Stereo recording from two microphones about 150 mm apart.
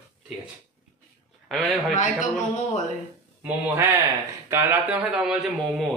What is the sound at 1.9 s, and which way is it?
Speech, 55° left (ahead or behind).